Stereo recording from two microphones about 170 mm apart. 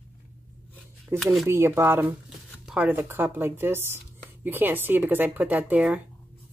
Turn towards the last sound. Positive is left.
turn(degrees=-10)  # may be behind; listen again after turning